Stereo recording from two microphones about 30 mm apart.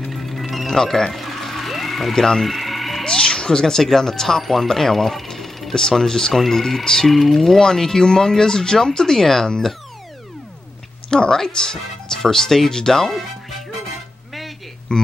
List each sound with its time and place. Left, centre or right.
0.1 s music: centre
0.8 s speech: centre
1.1 s a sound: centre
2.1 s speech: centre
2.4 s music: centre
3.0 s speech: left
4.4 s speech: centre
5.3 s jackhammer: centre
5.8 s speech: centre
7.1 s speech: centre
11.1 s speech: left
14.9 s speech: left